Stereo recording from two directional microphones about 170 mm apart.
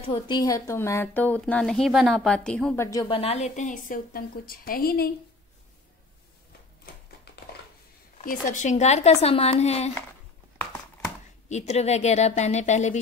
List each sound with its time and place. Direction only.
0.0 s speech: 25° left (ahead or behind)
3.2 s a woman's voice: 40° left (ahead or behind); by 5.1 s 65° left (ahead or behind)
8.5 s a woman's voice: 40° left (ahead or behind)
11.4 s a woman's voice: 40° left (ahead or behind)